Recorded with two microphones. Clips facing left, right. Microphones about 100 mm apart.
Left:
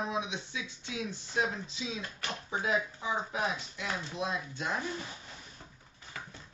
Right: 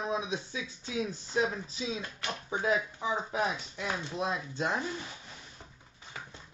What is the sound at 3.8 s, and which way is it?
Speech, 35° right (ahead or behind).